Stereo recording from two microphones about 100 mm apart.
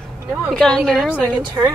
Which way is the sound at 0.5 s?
5° left (ahead or behind).